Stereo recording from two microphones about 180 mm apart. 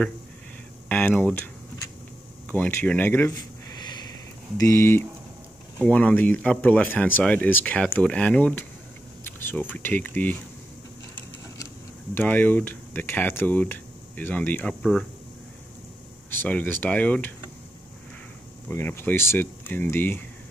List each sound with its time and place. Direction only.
0.8 s speech: 10° left (ahead or behind)
4.6 s speech: 15° left (ahead or behind)
12.1 s speech: 10° left (ahead or behind)
16.3 s speech: 10° left (ahead or behind)
18.7 s speech: 15° left (ahead or behind)